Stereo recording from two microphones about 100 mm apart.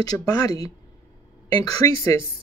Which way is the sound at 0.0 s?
40° left (ahead or behind).